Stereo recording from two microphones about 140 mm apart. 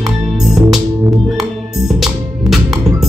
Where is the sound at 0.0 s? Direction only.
Centre (ahead or behind).